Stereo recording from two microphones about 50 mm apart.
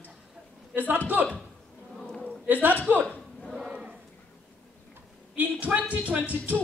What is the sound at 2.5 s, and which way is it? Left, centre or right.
Speech, right.